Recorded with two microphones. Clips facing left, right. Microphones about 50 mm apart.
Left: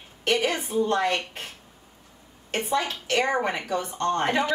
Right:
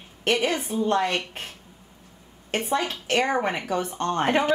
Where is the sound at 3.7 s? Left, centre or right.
Right.